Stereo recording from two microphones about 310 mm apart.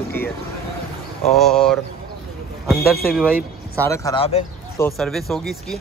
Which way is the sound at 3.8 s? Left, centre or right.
Centre.